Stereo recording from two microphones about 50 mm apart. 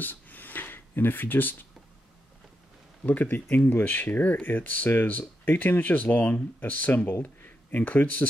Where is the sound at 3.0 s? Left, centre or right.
Left.